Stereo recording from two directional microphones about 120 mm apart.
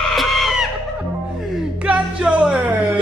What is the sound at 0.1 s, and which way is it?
Chicken, centre (ahead or behind).